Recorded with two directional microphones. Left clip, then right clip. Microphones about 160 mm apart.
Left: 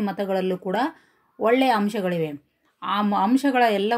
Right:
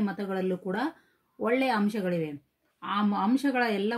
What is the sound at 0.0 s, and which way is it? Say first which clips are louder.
Speech: left 7 dB; 15° left (ahead or behind).